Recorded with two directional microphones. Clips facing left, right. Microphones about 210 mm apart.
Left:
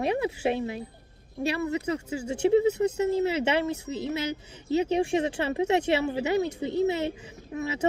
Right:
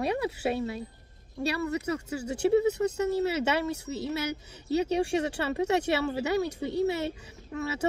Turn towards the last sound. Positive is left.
turn(degrees=20)  # may be behind; listen again after turning